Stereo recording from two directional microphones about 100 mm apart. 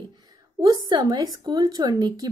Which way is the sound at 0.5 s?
40° right (ahead or behind).